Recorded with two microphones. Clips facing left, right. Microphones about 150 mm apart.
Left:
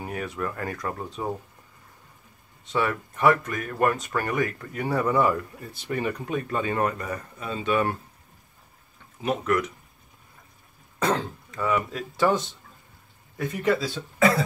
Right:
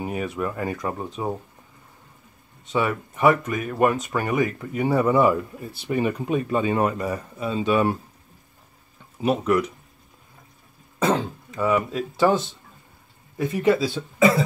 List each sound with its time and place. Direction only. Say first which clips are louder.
0.0 s speech: right 4 dB; 15° right (ahead or behind)
2.7 s speech: right 2 dB; 15° right (ahead or behind)
9.2 s speech: right 4 dB; 10° right (ahead or behind)
11.0 s speech: right 3 dB; 20° right (ahead or behind)